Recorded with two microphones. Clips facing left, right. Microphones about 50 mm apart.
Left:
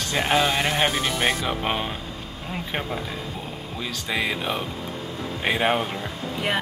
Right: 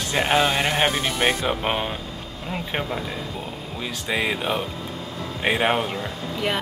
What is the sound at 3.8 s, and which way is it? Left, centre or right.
Speech, centre.